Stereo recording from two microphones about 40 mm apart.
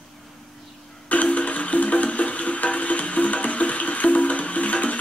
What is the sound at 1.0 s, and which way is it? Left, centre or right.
Music, left.